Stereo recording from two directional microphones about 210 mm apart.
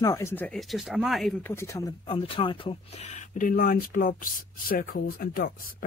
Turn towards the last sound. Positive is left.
turn(degrees=45)  # may be behind; listen again after turning